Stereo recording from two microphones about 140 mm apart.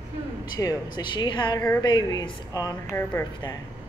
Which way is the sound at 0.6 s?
25° left (ahead or behind).